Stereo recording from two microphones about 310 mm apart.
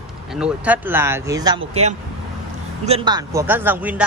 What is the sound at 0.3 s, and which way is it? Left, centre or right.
Speech, centre.